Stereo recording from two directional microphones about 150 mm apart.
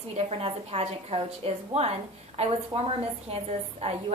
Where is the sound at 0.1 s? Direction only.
40° right (ahead or behind).